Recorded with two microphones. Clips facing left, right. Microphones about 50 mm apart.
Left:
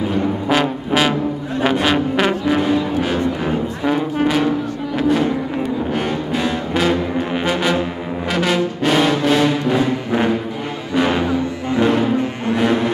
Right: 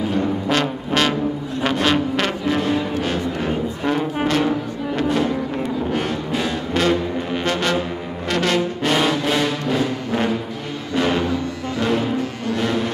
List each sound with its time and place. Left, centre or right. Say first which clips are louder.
0.5 s brass instrument: left 3 dB; centre
1.6 s music: left 2 dB; centre
8.3 s brass instrument: left 1 dB; centre
11.0 s music: left 3 dB; centre